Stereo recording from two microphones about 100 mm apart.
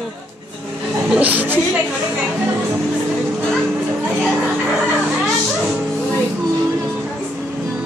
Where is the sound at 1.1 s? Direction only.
15° right (ahead or behind).